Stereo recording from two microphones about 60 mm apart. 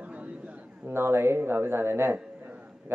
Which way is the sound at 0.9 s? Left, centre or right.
Right.